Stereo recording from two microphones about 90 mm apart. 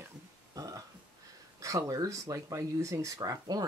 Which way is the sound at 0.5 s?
40° right (ahead or behind).